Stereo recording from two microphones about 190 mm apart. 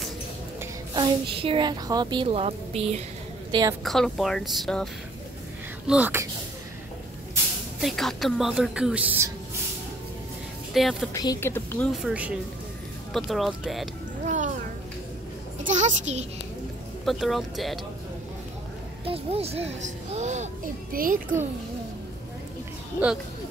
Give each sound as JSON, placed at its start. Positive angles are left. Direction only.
{"t": 0.9, "sound": "a woman's voice", "side_deg": -25}
{"t": 3.8, "sound": "a woman's voice", "side_deg": 0}
{"t": 5.9, "sound": "speech", "side_deg": -10}
{"t": 7.8, "sound": "a woman's voice", "side_deg": 0}
{"t": 10.7, "sound": "a woman's voice", "side_deg": 0}
{"t": 11.1, "sound": "speech", "side_deg": 15}
{"t": 11.9, "sound": "a woman's voice", "side_deg": -5}
{"t": 14.2, "sound": "music", "side_deg": -40}
{"t": 15.7, "sound": "a child's voice", "side_deg": -35}
{"t": 17.0, "sound": "a woman's voice", "side_deg": 0}
{"t": 19.0, "sound": "speech", "side_deg": -30}